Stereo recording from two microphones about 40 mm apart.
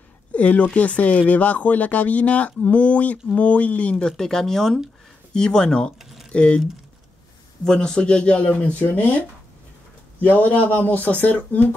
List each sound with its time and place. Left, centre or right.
0.3 s speech: left
3.9 s speech: centre
7.6 s speech: centre
10.2 s speech: left